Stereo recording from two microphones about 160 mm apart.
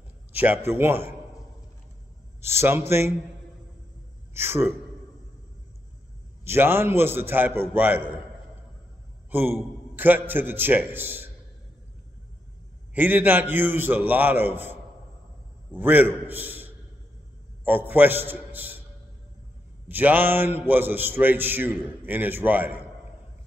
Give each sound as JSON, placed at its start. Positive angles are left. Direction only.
{"t": 0.3, "sound": "a man's voice", "side_deg": -10}
{"t": 2.4, "sound": "a man's voice", "side_deg": -15}
{"t": 4.3, "sound": "a man's voice", "side_deg": -15}
{"t": 6.4, "sound": "a man's voice", "side_deg": -15}
{"t": 9.3, "sound": "a man's voice", "side_deg": -10}
{"t": 12.9, "sound": "a man's voice", "side_deg": -10}
{"t": 19.9, "sound": "a man's voice", "side_deg": -10}